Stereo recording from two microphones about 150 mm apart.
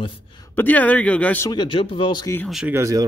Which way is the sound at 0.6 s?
10° left (ahead or behind).